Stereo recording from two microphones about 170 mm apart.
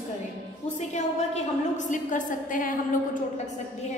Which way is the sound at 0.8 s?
40° left (ahead or behind).